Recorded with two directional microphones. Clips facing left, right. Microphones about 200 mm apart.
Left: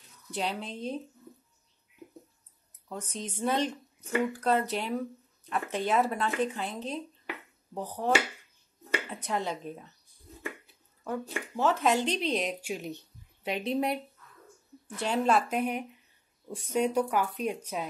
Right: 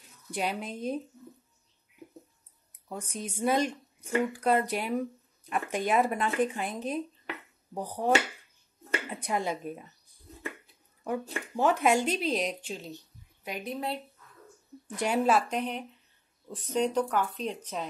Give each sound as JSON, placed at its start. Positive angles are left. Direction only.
{"t": 0.3, "sound": "speech", "side_deg": -10}
{"t": 2.0, "sound": "a sound", "side_deg": -15}
{"t": 2.9, "sound": "speech", "side_deg": -10}
{"t": 9.1, "sound": "speech", "side_deg": -10}
{"t": 11.5, "sound": "speech", "side_deg": -15}
{"t": 12.6, "sound": "speech", "side_deg": 15}
{"t": 13.4, "sound": "a woman's voice", "side_deg": 25}
{"t": 15.0, "sound": "speech", "side_deg": -10}
{"t": 15.4, "sound": "speech", "side_deg": 10}